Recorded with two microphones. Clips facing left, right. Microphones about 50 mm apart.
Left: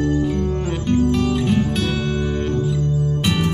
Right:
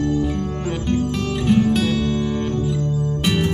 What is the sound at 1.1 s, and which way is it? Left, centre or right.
Music, centre.